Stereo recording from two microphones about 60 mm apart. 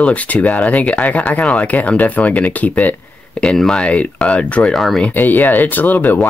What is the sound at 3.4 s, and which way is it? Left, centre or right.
Speech, centre.